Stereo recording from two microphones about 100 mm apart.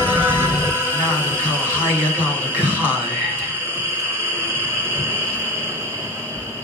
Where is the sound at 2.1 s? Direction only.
20° left (ahead or behind).